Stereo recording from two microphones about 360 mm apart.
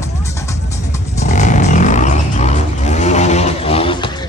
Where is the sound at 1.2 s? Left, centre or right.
Centre.